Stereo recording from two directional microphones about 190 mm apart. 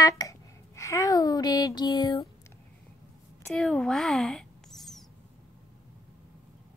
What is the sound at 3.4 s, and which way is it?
Mouse, 5° left (ahead or behind).